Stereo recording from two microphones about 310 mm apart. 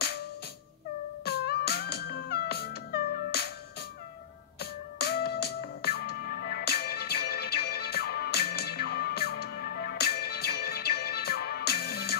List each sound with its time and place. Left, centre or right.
1.2 s music: left
4.6 s music: left